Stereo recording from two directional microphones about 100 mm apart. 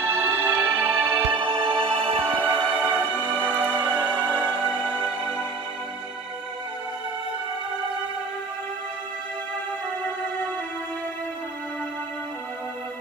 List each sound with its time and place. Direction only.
0.0 s music: 20° right (ahead or behind)
1.3 s music: 60° right (ahead or behind)
2.1 s music: 15° left (ahead or behind)